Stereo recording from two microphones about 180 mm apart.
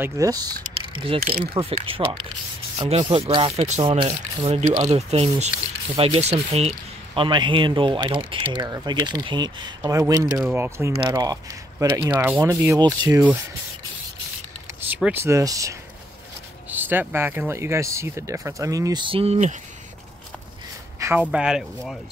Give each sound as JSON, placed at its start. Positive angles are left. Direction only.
{"t": 0.0, "sound": "speech", "side_deg": -20}
{"t": 11.0, "sound": "speech", "side_deg": -25}
{"t": 15.1, "sound": "speech", "side_deg": -15}
{"t": 21.0, "sound": "speech", "side_deg": -10}